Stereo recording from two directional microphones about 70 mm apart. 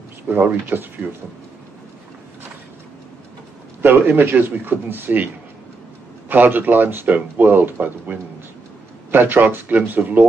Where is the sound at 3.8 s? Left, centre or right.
Right.